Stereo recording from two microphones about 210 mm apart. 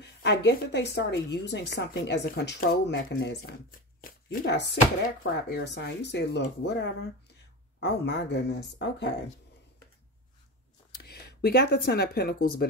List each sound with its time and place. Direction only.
0.0 s a woman's voice: 55° left (ahead or behind)
4.0 s shuffling cards: 45° left (ahead or behind)
5.2 s a woman's voice: 55° left (ahead or behind)
11.0 s speech: 50° left (ahead or behind)